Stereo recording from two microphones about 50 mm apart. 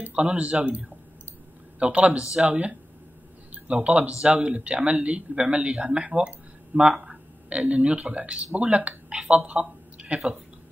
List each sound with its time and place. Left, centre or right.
0.1 s speech: right